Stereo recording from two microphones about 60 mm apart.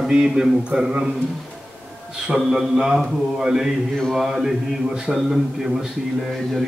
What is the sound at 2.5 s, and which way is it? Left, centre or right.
A man's voice, centre.